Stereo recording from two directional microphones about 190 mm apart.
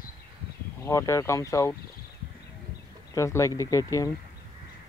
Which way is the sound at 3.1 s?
15° left (ahead or behind).